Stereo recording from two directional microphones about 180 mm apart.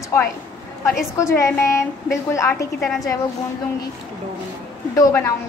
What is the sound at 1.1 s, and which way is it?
A woman's voice, 15° left (ahead or behind).